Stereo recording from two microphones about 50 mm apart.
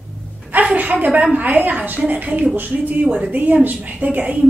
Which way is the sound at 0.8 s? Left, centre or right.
Right.